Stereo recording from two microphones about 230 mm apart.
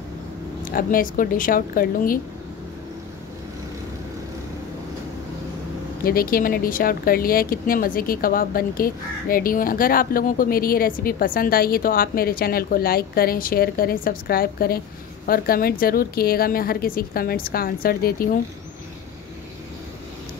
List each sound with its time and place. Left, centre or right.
0.7 s speech: left
6.0 s speech: left